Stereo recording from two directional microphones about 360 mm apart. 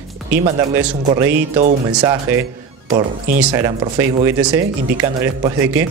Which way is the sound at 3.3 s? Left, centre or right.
Centre.